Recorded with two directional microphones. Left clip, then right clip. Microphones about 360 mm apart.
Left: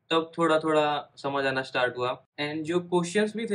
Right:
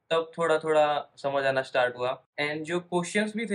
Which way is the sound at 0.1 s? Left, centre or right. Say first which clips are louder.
Left 1 dB; centre.